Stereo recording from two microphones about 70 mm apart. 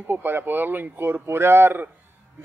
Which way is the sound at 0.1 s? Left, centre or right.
Right.